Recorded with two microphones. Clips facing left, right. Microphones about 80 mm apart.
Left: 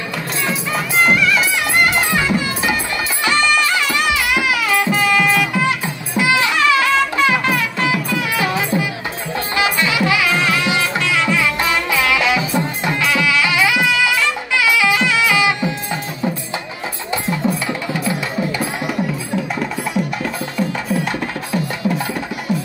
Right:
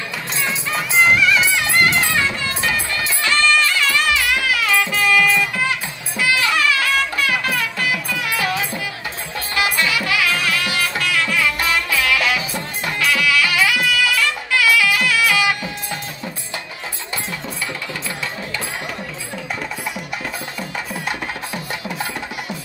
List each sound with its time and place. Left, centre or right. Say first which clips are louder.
1.0 s music: even; centre
1.4 s music: left 1 dB; centre
17.3 s music: left 8 dB; left